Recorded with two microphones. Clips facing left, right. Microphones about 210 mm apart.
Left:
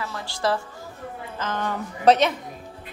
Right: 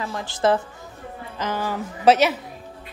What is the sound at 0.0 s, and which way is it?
Speech, 20° right (ahead or behind).